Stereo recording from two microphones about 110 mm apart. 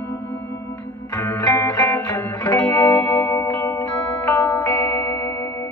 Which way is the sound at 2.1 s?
20° left (ahead or behind).